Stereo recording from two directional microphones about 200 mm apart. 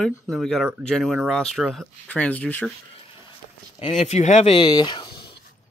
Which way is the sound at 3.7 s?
30° left (ahead or behind).